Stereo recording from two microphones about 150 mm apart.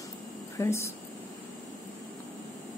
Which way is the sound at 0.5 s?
20° left (ahead or behind).